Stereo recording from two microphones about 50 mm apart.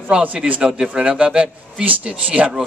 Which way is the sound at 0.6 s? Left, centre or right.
Centre.